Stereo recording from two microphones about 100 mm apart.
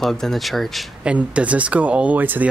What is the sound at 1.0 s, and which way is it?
Speech, 10° right (ahead or behind).